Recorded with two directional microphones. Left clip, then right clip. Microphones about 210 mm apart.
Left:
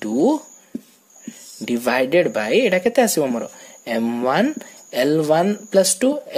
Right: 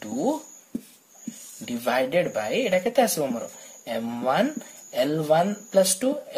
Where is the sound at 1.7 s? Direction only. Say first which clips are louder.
Left 6 dB; 45° left (ahead or behind).